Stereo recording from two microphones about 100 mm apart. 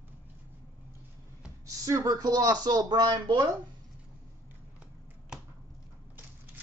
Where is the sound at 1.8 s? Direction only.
35° right (ahead or behind).